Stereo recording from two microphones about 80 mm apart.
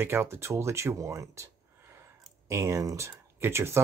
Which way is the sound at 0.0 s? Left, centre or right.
Right.